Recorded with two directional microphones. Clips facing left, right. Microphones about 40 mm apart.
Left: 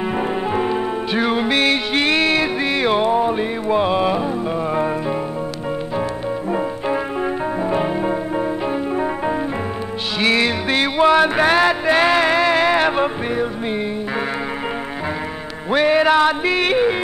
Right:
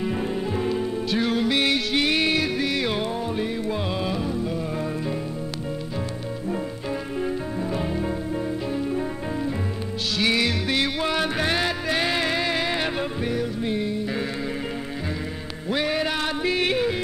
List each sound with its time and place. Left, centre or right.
0.1 s music: left
7.7 s music: left
10.1 s music: left
15.7 s music: left